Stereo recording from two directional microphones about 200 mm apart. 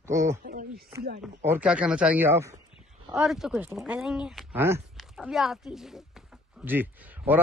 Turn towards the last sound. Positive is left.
turn(degrees=-10)  # may be behind; listen again after turning